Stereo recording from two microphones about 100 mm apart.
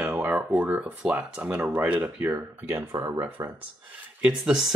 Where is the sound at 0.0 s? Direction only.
15° right (ahead or behind).